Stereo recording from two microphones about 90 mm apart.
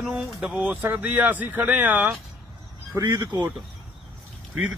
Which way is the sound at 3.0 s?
50° right (ahead or behind).